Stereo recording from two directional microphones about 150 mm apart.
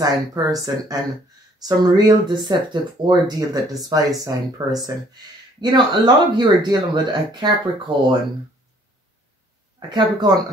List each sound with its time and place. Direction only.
0.0 s speech: 25° right (ahead or behind)
9.8 s speech: 30° right (ahead or behind)